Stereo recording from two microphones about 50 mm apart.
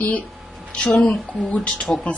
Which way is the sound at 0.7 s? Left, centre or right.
Left.